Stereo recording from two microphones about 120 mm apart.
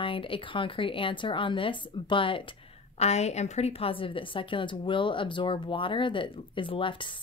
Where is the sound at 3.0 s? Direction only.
65° left (ahead or behind).